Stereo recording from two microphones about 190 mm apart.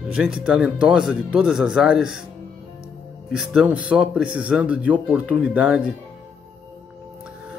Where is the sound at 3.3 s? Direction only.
5° right (ahead or behind).